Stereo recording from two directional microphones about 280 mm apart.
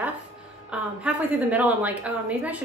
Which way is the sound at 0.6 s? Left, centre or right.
Centre.